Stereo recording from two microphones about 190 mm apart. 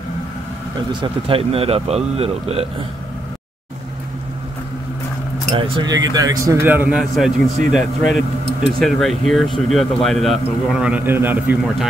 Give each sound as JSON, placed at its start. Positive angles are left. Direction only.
{"t": 1.0, "sound": "speech", "side_deg": -30}
{"t": 5.5, "sound": "speech", "side_deg": -20}